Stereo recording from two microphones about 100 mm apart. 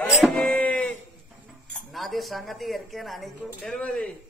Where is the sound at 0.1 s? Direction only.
Centre (ahead or behind).